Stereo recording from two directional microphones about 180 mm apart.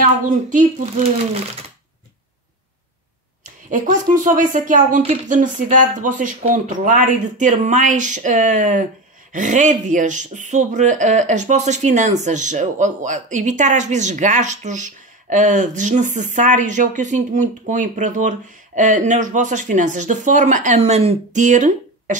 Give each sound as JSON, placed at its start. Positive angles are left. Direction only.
{"t": 0.2, "sound": "speech", "side_deg": -45}
{"t": 3.4, "sound": "speech", "side_deg": -45}